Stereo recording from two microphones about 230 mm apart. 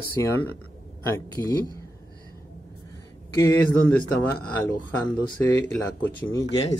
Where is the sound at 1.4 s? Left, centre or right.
Centre.